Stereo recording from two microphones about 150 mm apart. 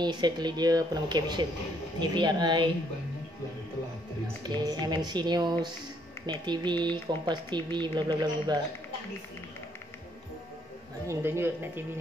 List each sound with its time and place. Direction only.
0.0 s speech: 30° right (ahead or behind)
4.4 s speech: 30° right (ahead or behind)
11.1 s a woman's voice: 15° right (ahead or behind)